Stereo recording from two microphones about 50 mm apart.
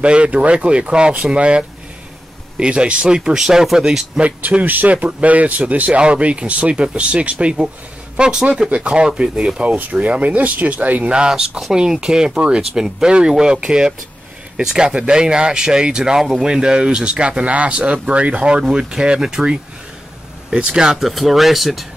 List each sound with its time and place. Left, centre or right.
0.0 s speech: right
4.2 s speech: right
9.6 s speech: right
11.1 s speech: centre
21.1 s speech: centre